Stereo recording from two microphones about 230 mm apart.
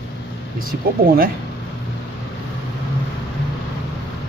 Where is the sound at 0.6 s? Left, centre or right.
Right.